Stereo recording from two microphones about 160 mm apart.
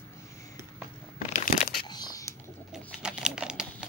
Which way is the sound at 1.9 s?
25° left (ahead or behind).